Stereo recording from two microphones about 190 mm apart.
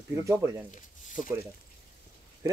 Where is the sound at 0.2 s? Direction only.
15° right (ahead or behind).